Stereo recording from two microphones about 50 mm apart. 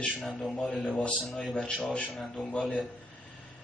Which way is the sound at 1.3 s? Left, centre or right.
Centre.